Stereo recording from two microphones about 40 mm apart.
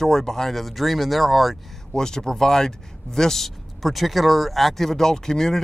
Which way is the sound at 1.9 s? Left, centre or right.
Centre.